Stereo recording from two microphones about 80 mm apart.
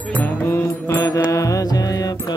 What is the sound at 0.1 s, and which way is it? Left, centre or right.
Mantra, centre.